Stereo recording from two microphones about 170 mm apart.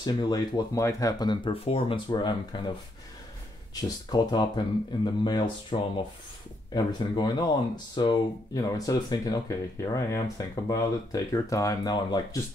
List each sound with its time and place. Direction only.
0.0 s speech: 25° left (ahead or behind)
4.1 s speech: 25° left (ahead or behind)